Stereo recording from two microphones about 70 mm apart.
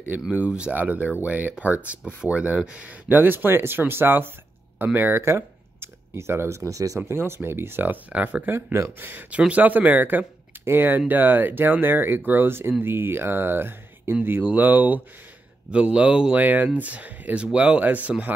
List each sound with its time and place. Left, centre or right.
0.4 s speech: centre; by 7.0 s right
7.1 s speech: right